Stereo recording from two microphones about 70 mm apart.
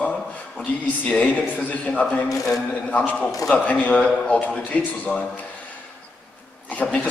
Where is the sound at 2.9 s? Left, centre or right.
Centre.